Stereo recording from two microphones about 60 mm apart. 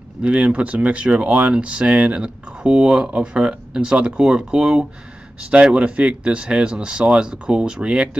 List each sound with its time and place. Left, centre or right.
0.2 s speech: centre